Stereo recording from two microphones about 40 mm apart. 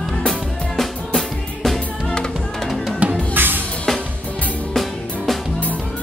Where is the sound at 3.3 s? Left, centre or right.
Right.